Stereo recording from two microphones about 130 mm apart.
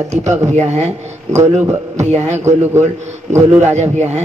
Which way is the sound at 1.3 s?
20° right (ahead or behind).